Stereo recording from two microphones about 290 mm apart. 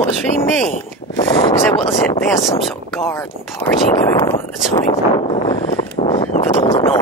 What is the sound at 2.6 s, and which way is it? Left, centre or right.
Speech, centre.